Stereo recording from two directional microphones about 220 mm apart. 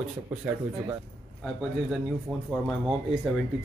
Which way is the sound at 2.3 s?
5° right (ahead or behind).